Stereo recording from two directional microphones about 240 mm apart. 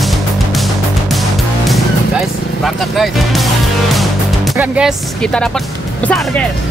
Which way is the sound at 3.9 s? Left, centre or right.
Centre.